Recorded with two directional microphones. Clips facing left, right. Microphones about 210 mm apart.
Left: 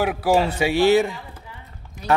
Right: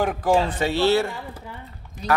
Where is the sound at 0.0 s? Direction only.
10° left (ahead or behind).